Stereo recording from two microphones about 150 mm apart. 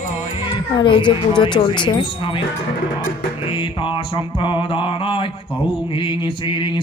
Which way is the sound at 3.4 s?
35° left (ahead or behind).